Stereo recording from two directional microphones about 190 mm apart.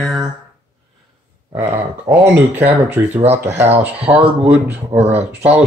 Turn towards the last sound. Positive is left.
turn(degrees=-5)  # may be behind; listen again after turning